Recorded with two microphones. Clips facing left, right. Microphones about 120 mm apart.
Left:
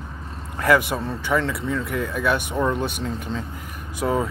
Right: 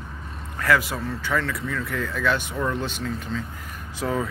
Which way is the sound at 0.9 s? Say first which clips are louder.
Left 3 dB; 25° left (ahead or behind).